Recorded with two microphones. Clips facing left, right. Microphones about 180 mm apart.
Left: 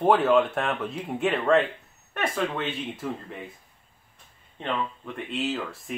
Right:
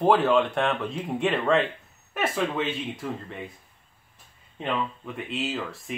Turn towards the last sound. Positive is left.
turn(degrees=0)  # may be behind; listen again after turning